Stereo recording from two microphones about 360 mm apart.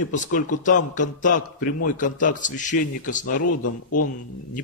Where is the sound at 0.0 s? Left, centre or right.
Left.